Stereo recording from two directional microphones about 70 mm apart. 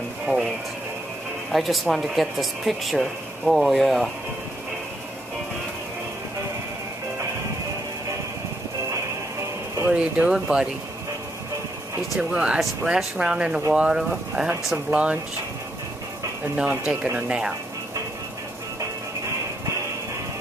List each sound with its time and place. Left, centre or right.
1.5 s speech: centre
8.9 s music: right
9.8 s speech: centre
10.3 s speech: centre
12.2 s speech: centre
16.5 s speech: centre